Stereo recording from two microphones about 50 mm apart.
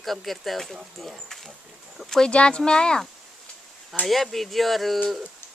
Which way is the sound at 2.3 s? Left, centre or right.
Left.